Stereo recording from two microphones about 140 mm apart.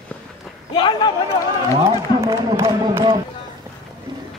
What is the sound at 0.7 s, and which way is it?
Speech, 35° left (ahead or behind).